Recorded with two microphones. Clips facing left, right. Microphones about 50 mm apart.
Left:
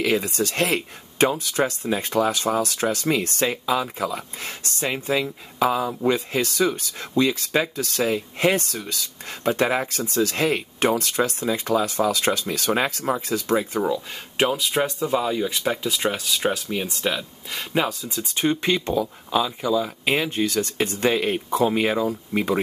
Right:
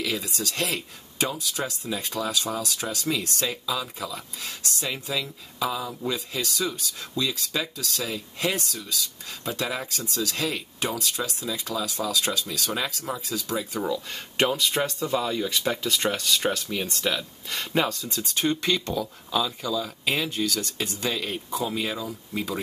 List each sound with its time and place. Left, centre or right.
0.0 s speech: left
14.3 s speech: centre; by 22.6 s left